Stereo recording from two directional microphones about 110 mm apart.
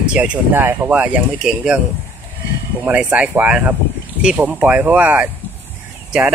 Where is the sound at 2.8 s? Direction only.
15° right (ahead or behind).